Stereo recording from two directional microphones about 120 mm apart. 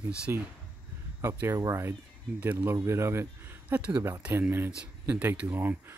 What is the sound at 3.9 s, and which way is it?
Speech, 25° right (ahead or behind).